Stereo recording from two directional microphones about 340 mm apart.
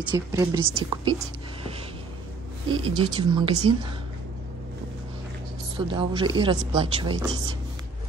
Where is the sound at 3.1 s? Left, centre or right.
Centre.